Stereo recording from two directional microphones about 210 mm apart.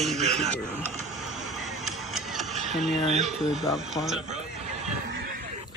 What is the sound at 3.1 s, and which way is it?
Speech, 30° right (ahead or behind).